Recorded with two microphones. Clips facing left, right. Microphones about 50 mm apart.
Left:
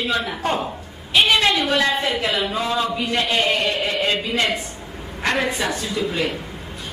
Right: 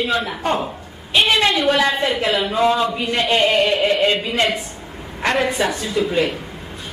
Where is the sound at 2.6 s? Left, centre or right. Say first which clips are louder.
Right 5 dB; centre.